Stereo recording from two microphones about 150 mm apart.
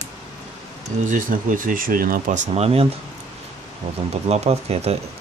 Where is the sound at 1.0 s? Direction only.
60° right (ahead or behind); by 2.8 s 45° right (ahead or behind).